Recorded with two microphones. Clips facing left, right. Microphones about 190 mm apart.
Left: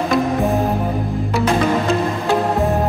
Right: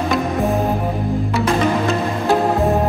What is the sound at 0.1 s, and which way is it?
Music, centre (ahead or behind).